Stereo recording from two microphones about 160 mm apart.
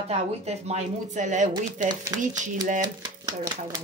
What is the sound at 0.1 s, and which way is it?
Speech, 40° right (ahead or behind).